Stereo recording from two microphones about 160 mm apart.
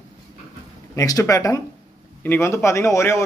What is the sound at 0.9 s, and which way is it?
A man's voice, 20° left (ahead or behind).